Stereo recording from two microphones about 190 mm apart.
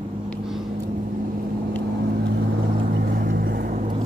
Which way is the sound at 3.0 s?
55° right (ahead or behind).